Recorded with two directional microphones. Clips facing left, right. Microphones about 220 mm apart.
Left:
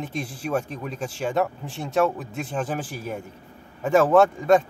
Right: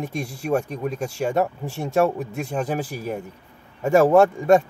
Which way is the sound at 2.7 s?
10° right (ahead or behind).